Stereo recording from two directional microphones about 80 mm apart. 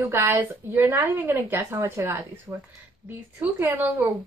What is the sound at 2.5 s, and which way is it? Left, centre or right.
A woman's voice, centre.